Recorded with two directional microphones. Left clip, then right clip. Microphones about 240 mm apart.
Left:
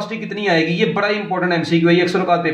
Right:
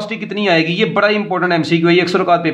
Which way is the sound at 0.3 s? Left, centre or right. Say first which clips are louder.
Right 3 dB; right.